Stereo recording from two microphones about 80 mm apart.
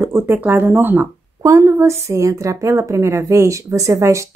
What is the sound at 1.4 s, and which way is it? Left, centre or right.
Speech, right.